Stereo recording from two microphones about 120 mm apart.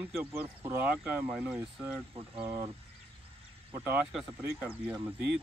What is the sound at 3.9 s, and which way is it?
Speech, 5° right (ahead or behind).